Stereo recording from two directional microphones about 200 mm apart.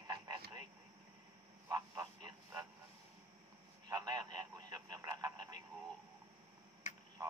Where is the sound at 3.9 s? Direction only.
15° right (ahead or behind).